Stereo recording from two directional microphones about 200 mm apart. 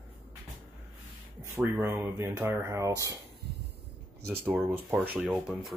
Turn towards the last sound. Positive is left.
turn(degrees=0)  # may be behind; listen again after turning